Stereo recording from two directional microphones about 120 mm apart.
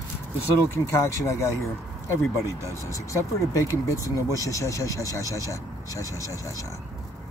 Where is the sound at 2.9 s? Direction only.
25° left (ahead or behind).